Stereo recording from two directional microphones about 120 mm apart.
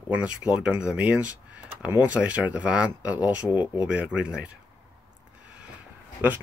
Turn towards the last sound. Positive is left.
turn(degrees=-15)  # may be behind; listen again after turning